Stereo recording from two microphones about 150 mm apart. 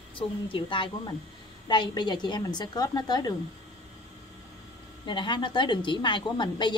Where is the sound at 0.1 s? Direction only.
35° left (ahead or behind).